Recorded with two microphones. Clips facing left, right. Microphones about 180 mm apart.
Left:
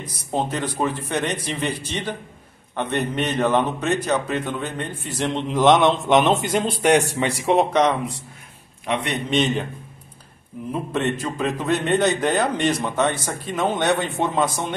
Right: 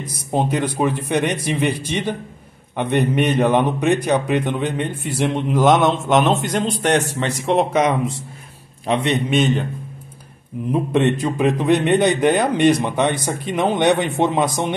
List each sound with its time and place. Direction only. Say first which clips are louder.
0.0 s a man's voice: right 4 dB; 10° right (ahead or behind); by 7.6 s 5° left (ahead or behind)
8.8 s a man's voice: right 5 dB; 30° right (ahead or behind)
9.3 s a man's voice: even; centre (ahead or behind)
10.7 s a man's voice: right 6 dB; 15° right (ahead or behind)